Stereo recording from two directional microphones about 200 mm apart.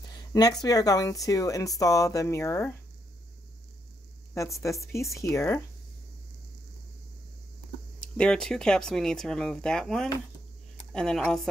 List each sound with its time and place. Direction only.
0.3 s speech: 20° left (ahead or behind)
5.1 s speech: 15° left (ahead or behind)
8.2 s speech: 5° left (ahead or behind)